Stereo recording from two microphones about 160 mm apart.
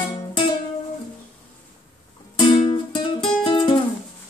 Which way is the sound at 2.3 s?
30° left (ahead or behind).